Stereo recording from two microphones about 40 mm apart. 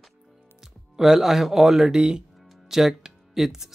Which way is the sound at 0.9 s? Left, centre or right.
Centre.